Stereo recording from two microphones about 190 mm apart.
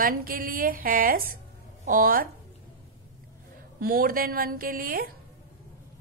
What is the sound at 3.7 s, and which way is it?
A woman's voice, 50° right (ahead or behind).